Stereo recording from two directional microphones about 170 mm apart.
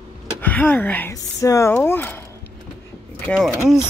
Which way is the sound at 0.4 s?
10° left (ahead or behind).